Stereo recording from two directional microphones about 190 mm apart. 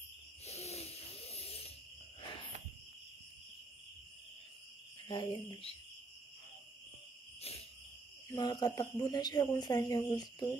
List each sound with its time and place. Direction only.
0.5 s a sound: 35° left (ahead or behind)
5.0 s speech: 25° left (ahead or behind)
8.3 s speech: 20° left (ahead or behind)